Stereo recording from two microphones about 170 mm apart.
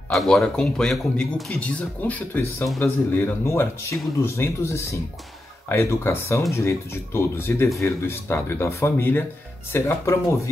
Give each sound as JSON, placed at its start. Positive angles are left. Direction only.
{"t": 0.1, "sound": "speech", "side_deg": 0}